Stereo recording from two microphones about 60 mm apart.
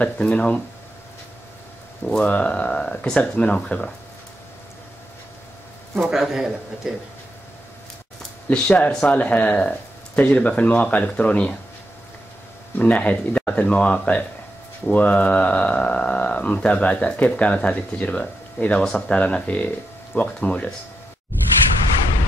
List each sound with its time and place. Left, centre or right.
0.0 s speech: centre
2.0 s speech: centre
6.0 s a man's voice: centre
8.5 s speech: left
12.7 s speech: left